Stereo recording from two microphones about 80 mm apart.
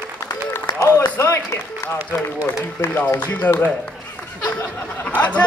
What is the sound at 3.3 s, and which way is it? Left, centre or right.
Speech, left.